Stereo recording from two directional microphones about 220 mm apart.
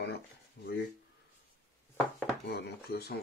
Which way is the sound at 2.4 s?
50° left (ahead or behind).